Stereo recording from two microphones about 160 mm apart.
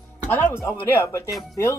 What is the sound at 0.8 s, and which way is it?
Speech, 15° left (ahead or behind).